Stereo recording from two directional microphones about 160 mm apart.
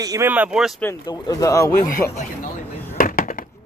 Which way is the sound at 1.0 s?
25° left (ahead or behind).